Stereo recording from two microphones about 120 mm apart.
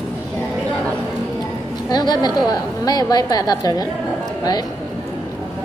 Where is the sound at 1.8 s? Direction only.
35° left (ahead or behind).